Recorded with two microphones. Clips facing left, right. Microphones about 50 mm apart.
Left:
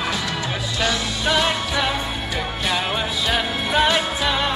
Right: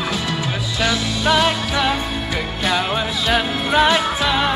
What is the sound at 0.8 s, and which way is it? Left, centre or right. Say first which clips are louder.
Music: right 3 dB; right.